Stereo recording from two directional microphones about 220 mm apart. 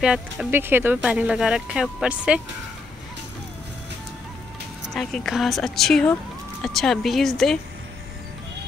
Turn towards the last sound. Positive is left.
turn(degrees=0)  # may be behind; listen again after turning